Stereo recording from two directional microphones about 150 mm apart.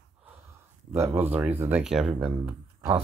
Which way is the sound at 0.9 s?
15° right (ahead or behind).